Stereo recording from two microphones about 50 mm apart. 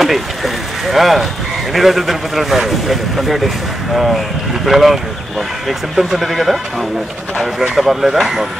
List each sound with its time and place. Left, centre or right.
0.0 s speech: centre
7.7 s speech: centre